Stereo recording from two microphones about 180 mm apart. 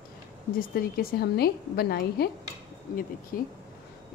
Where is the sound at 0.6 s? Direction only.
55° left (ahead or behind).